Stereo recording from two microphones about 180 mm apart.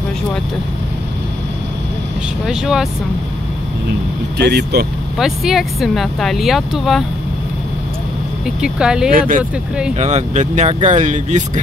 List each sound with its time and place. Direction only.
2.4 s speech: 5° right (ahead or behind)
4.4 s speech: 65° right (ahead or behind)
5.2 s speech: centre (ahead or behind)
8.5 s speech: 5° right (ahead or behind)
9.9 s speech: 40° right (ahead or behind)